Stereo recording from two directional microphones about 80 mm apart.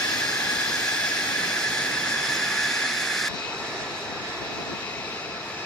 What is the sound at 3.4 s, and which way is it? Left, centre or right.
Vehicle, centre.